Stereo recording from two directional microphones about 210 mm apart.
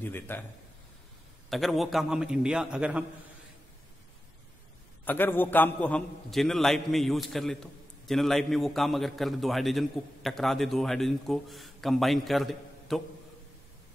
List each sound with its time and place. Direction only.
0.0 s a man's voice: 10° left (ahead or behind)
1.5 s a man's voice: centre (ahead or behind)
5.0 s a man's voice: 10° left (ahead or behind)